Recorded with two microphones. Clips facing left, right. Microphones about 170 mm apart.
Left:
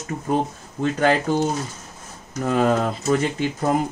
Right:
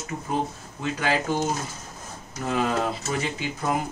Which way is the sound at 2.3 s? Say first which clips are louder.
Left 6 dB; 45° left (ahead or behind).